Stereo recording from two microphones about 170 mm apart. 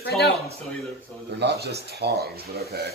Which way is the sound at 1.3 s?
75° right (ahead or behind).